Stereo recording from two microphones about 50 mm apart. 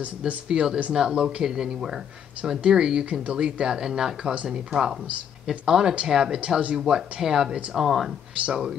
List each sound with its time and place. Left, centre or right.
0.5 s speech: centre
3.7 s speech: centre
6.9 s speech: centre